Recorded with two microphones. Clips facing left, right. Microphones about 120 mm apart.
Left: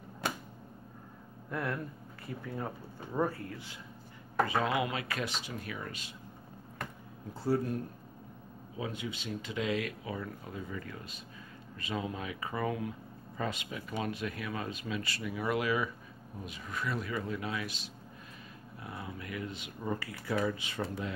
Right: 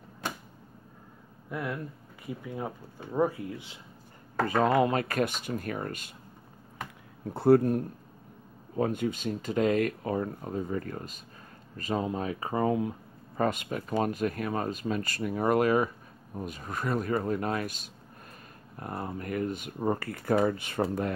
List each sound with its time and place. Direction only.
1.5 s speech: 5° right (ahead or behind)
4.5 s speech: 45° right (ahead or behind)
7.2 s speech: 60° right (ahead or behind); by 12.9 s 30° right (ahead or behind)
13.4 s speech: 50° right (ahead or behind)